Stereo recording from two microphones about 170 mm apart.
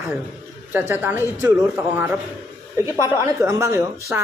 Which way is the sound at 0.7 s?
10° right (ahead or behind).